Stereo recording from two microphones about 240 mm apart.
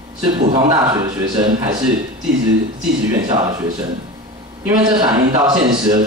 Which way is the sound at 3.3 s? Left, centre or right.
Centre.